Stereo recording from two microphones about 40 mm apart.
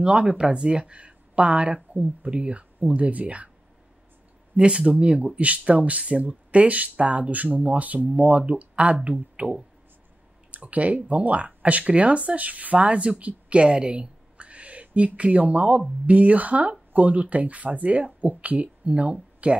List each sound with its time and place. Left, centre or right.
0.0 s speech: right
4.6 s speech: right